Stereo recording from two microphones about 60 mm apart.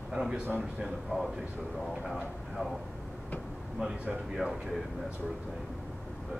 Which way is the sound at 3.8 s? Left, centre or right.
Centre.